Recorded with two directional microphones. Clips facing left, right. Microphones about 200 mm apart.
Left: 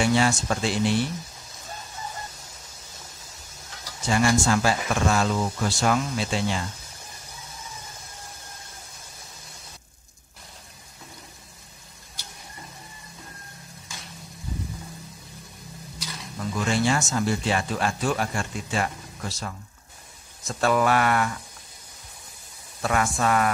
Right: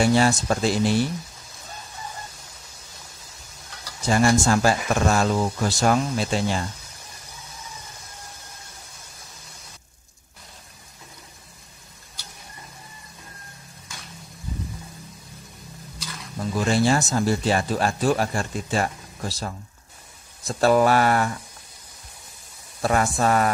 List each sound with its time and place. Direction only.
0.0 s speech: 40° right (ahead or behind)
4.0 s speech: 40° right (ahead or behind)
16.5 s speech: 35° right (ahead or behind)
22.8 s speech: 35° right (ahead or behind)